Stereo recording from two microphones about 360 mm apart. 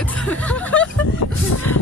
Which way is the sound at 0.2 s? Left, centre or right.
Centre.